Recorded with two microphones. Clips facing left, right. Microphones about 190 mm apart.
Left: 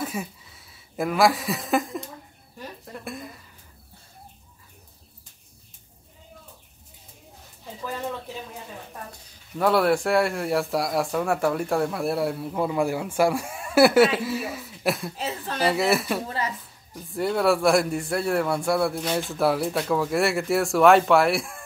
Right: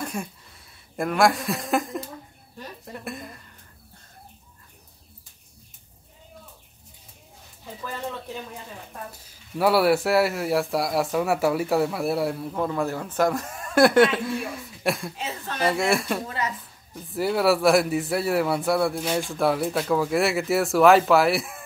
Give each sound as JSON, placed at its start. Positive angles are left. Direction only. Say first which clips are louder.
{"t": 0.0, "sound": "speech", "louder": "left 1 dB", "side_deg": 5}
{"t": 9.1, "sound": "speech", "louder": "right 2 dB", "side_deg": -5}
{"t": 15.1, "sound": "speech", "louder": "left 2 dB", "side_deg": 35}
{"t": 15.6, "sound": "speech", "louder": "left 1 dB", "side_deg": 5}